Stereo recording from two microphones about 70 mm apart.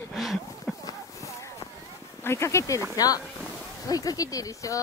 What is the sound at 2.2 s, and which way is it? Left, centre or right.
Speech, left.